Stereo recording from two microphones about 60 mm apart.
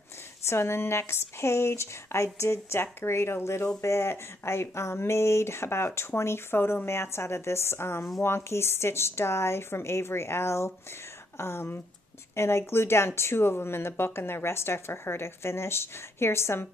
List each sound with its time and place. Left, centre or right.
0.5 s speech: left